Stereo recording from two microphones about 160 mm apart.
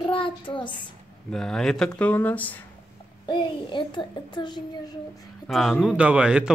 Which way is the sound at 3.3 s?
30° left (ahead or behind).